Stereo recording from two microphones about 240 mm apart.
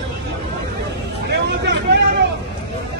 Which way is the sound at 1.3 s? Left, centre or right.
Right.